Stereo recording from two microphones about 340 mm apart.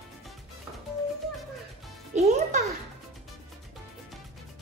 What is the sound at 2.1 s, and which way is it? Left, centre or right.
Music, right.